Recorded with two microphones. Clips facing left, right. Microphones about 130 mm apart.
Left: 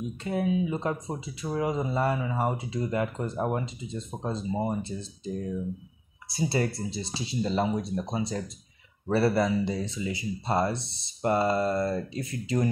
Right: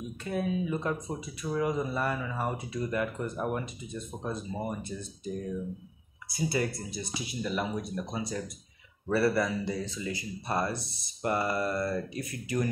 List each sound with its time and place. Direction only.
0.2 s speech: 25° left (ahead or behind)